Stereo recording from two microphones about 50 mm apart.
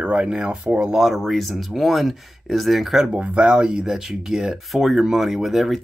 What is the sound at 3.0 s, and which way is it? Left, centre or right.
Speech, right.